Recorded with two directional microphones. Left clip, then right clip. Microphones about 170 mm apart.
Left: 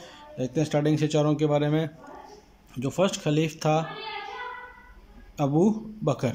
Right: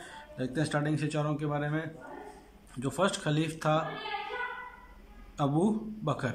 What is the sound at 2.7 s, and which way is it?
Speech, 10° left (ahead or behind).